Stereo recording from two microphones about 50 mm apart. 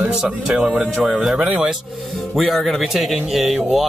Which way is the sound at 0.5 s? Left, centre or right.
Centre.